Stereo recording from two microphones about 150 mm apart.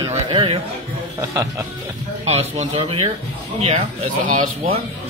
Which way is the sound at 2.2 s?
45° right (ahead or behind).